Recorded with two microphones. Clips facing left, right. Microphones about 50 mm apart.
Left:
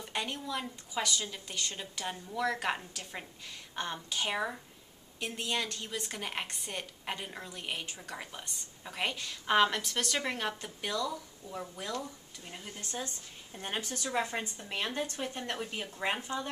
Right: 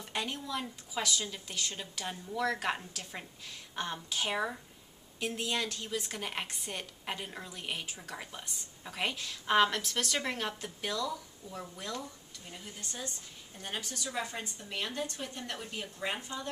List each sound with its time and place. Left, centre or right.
0.0 s a woman's voice: centre; by 16.4 s left